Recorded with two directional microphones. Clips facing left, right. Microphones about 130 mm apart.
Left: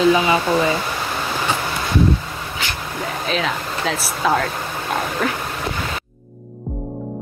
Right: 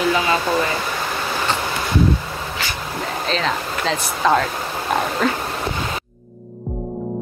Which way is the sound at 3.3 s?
5° left (ahead or behind).